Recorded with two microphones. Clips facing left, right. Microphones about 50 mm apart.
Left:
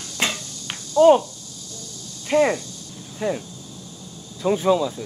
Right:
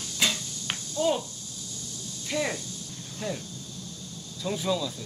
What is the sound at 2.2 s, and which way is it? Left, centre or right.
Speech, left.